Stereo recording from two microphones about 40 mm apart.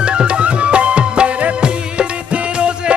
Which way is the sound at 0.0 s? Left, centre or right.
Right.